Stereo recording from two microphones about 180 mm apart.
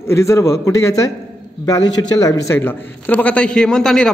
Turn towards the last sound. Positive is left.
turn(degrees=5)  # may be behind; listen again after turning